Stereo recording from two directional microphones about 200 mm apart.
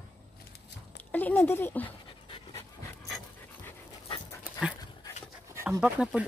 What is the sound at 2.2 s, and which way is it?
Dog, 25° left (ahead or behind).